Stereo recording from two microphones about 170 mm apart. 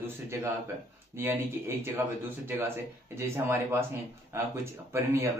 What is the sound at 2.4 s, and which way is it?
Speech, 15° right (ahead or behind).